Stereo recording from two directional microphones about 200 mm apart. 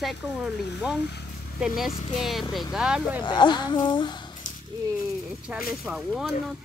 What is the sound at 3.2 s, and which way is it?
Speech, 20° left (ahead or behind).